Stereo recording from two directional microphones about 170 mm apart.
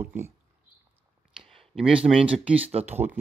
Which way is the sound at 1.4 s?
Centre (ahead or behind).